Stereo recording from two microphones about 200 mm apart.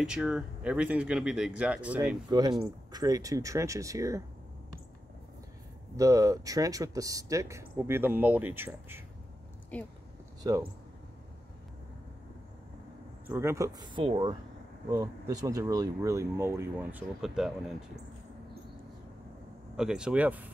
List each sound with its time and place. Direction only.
0.0 s speech: 5° right (ahead or behind)
2.2 s speech: 20° right (ahead or behind)
5.9 s speech: 15° right (ahead or behind)
9.7 s speech: 5° left (ahead or behind)
10.4 s speech: 20° right (ahead or behind)
13.3 s speech: 15° right (ahead or behind)
17.2 s speech: centre (ahead or behind)
19.8 s speech: 5° right (ahead or behind)